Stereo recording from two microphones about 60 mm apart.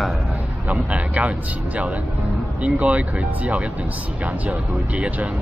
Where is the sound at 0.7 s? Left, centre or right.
Right.